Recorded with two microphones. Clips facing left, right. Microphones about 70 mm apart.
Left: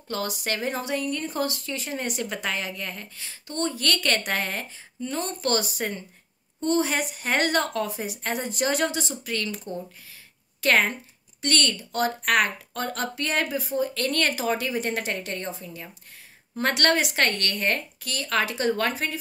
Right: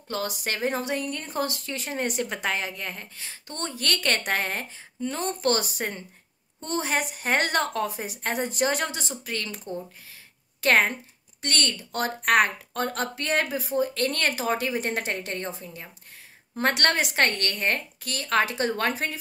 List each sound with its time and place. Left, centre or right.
0.1 s a woman's voice: right
16.5 s speech: right
18.0 s a woman's voice: right